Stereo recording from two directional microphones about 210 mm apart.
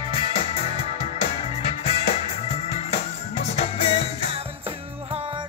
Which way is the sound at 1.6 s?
30° left (ahead or behind).